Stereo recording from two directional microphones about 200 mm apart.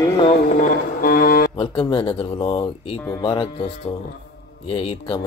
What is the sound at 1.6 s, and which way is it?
Speech, 25° left (ahead or behind).